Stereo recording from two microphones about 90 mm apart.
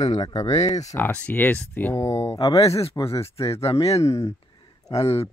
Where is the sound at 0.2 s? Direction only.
45° left (ahead or behind).